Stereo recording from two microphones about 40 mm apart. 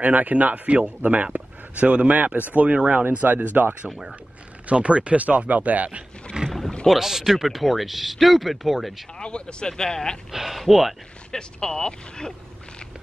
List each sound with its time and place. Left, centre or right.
0.0 s a man's voice: right
3.9 s speech: centre
4.6 s speech: right
6.4 s boat: right
6.9 s speech: centre
9.2 s speech: left
10.3 s speech: centre
11.3 s speech: centre